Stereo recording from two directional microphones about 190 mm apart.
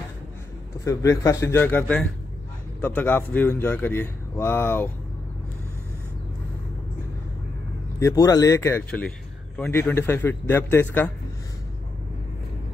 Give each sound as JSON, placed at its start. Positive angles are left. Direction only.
{"t": 0.8, "sound": "a man's voice", "side_deg": 15}
{"t": 8.0, "sound": "a man's voice", "side_deg": 15}